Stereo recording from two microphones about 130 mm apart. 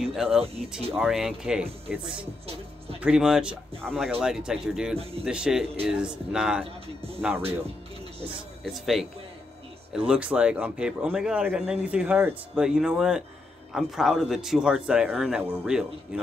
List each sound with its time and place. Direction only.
0.0 s music: 5° right (ahead or behind)
0.9 s a man's voice: 5° right (ahead or behind)
4.9 s speech: 50° right (ahead or behind)
5.2 s a man's voice: 5° right (ahead or behind)
8.6 s a man's voice: centre (ahead or behind)